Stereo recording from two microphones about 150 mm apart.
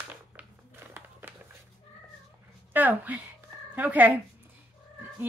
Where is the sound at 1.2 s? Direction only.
15° right (ahead or behind).